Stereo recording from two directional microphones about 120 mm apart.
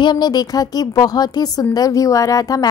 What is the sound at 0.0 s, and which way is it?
A woman's voice, 35° left (ahead or behind).